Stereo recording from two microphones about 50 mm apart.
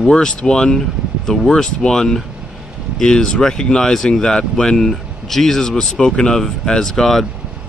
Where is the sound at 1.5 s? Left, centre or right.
Centre.